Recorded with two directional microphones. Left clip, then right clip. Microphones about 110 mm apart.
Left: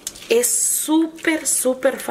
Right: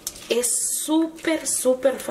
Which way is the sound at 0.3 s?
30° left (ahead or behind).